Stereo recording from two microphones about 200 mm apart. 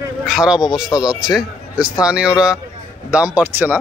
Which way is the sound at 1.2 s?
5° right (ahead or behind).